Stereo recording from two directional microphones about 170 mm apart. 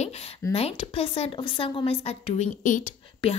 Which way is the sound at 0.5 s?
35° left (ahead or behind).